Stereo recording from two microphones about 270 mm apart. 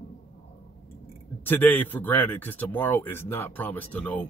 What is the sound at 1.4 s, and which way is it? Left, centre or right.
A man's voice, centre.